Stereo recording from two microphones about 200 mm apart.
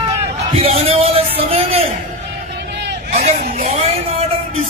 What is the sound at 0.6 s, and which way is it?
Music, 30° right (ahead or behind).